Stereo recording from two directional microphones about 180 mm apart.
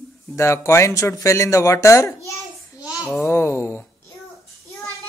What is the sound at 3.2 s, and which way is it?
Speech, 15° left (ahead or behind).